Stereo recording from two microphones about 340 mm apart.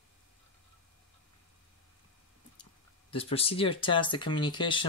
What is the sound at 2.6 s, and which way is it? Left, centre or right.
Speech, centre.